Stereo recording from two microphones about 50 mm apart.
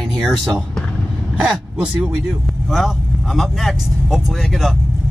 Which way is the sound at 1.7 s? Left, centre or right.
Centre.